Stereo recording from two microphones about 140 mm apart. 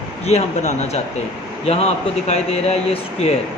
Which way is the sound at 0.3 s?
55° left (ahead or behind).